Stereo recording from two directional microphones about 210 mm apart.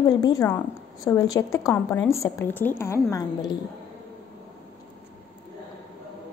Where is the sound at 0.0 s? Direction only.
20° left (ahead or behind).